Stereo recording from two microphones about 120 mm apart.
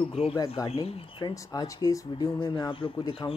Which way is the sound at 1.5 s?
30° left (ahead or behind).